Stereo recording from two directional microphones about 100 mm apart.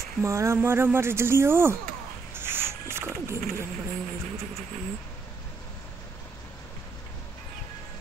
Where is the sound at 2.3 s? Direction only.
25° right (ahead or behind).